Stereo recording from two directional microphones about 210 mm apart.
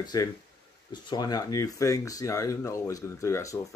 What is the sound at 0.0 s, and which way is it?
Speech, 20° left (ahead or behind).